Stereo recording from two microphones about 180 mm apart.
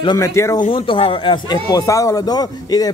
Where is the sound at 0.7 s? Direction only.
30° left (ahead or behind).